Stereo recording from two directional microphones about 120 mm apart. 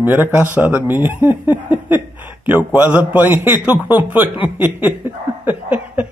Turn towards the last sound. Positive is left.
turn(degrees=-10)  # may be behind; listen again after turning